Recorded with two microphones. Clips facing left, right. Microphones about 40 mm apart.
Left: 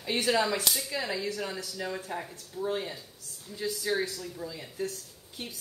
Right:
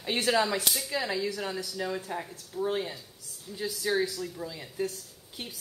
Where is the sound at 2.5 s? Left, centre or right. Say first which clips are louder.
Right 2 dB; centre.